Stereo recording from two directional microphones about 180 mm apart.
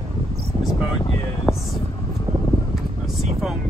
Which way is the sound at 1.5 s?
15° left (ahead or behind).